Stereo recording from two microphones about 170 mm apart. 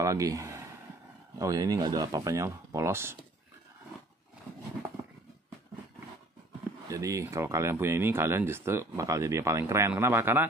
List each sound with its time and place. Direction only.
0.0 s speech: 20° right (ahead or behind)
6.9 s speech: 20° right (ahead or behind)